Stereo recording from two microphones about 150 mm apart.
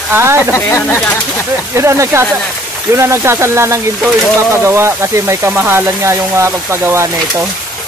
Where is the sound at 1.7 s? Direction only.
20° right (ahead or behind).